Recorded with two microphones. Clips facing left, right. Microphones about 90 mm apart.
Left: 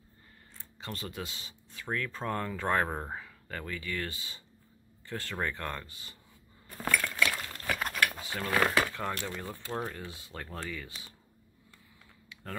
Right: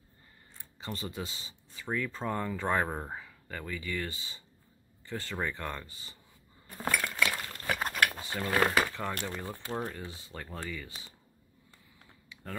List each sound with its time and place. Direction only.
0.7 s speech: centre (ahead or behind)
6.8 s chink: 15° right (ahead or behind)
7.2 s chink: 5° right (ahead or behind)
7.6 s a sound: 30° right (ahead or behind)
8.1 s a sound: centre (ahead or behind)
8.6 s speech: 5° right (ahead or behind)